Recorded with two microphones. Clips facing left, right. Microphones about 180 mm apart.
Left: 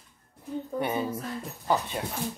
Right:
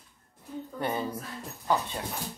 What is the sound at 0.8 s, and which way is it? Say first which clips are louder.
Speech: left 1 dB; 10° left (ahead or behind).